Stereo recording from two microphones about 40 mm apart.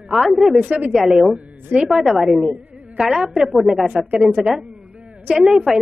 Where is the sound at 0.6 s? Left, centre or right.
Right.